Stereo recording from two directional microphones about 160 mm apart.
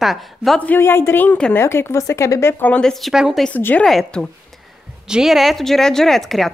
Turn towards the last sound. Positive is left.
turn(degrees=0)  # may be behind; listen again after turning